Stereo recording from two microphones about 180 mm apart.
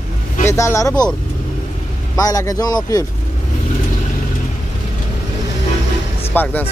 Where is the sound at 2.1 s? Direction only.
20° left (ahead or behind).